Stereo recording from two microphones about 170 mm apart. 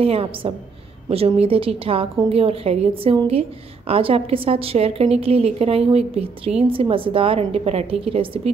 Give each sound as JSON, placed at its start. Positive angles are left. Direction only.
{"t": 0.0, "sound": "a woman's voice", "side_deg": -35}